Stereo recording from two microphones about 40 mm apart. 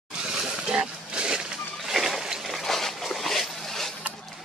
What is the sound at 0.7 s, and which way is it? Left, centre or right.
Pig, right.